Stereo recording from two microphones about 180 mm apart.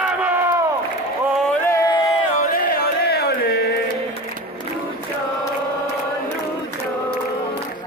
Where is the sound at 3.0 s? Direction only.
60° left (ahead or behind).